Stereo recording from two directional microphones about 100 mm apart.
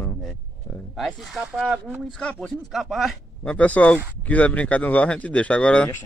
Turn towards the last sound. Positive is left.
turn(degrees=10)  # may be behind; listen again after turning